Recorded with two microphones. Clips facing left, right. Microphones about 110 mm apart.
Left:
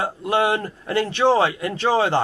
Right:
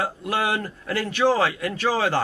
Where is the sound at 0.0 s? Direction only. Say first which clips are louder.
Left 4 dB; 25° left (ahead or behind).